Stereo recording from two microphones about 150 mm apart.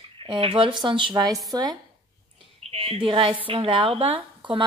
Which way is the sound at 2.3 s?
40° right (ahead or behind).